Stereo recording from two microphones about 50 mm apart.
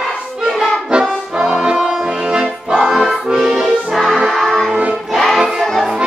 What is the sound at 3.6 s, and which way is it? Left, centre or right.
Music, centre.